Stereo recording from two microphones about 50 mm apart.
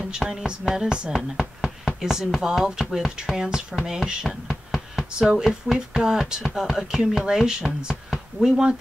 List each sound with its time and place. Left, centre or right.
0.2 s speech: centre
0.8 s speech: centre
1.6 s speech: centre